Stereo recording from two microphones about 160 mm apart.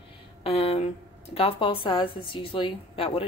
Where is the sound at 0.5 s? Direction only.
40° left (ahead or behind).